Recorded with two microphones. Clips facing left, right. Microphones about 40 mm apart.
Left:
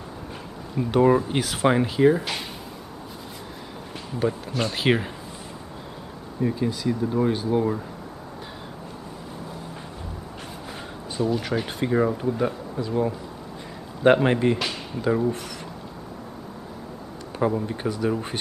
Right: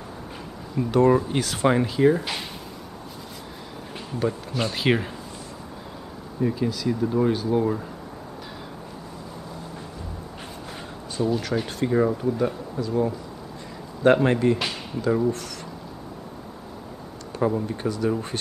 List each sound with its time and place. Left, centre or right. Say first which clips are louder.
0.7 s speech: even; centre
4.2 s speech: left 1 dB; centre
6.4 s speech: even; centre
11.1 s speech: even; centre
11.6 s speech: right 1 dB; centre
14.1 s speech: even; centre
17.4 s speech: even; centre